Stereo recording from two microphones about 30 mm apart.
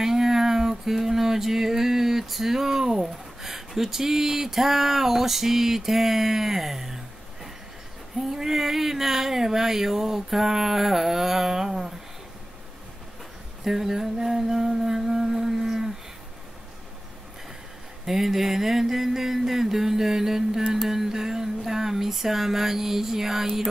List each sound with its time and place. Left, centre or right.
0.0 s a sound: centre
2.3 s speech: centre
8.3 s speech: centre
13.7 s speech: centre
14.7 s humming: centre
18.0 s speech: centre
20.9 s a sound: centre